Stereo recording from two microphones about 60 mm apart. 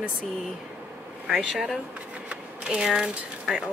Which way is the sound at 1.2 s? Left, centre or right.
Centre.